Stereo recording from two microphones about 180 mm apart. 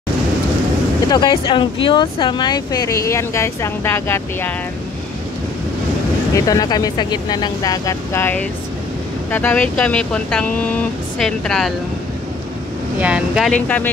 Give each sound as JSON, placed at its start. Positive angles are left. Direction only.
{"t": 1.0, "sound": "speech", "side_deg": 25}
{"t": 6.3, "sound": "speech", "side_deg": 20}
{"t": 13.0, "sound": "speech", "side_deg": -5}